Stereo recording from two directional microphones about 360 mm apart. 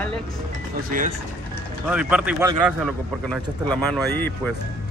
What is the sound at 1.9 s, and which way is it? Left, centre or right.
Speech, centre.